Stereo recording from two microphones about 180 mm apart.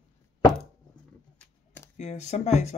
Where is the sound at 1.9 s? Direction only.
40° left (ahead or behind).